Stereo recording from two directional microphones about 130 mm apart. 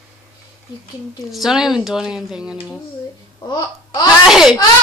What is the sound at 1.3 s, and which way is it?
A woman's voice, 5° right (ahead or behind).